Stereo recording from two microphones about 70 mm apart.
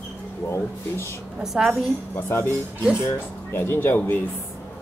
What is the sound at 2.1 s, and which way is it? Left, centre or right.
Speech, left.